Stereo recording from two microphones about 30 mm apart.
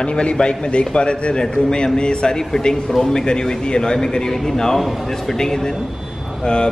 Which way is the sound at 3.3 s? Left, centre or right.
Left.